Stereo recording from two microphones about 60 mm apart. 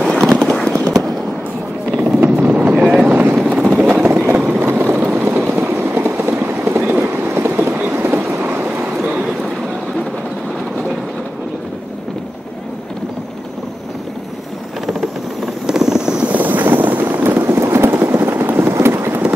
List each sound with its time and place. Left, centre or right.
0.0 s clip-clop: centre
1.9 s music: centre
2.1 s vehicle: right
4.0 s vehicle: right
8.6 s vehicle: right
9.0 s boat: right
14.9 s vehicle: centre
16.3 s clip-clop: right